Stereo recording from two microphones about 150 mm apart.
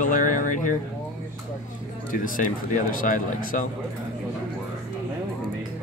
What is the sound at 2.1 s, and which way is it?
Speech, 65° left (ahead or behind).